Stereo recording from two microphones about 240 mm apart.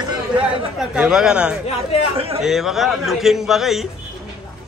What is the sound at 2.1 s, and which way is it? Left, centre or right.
Speech, right.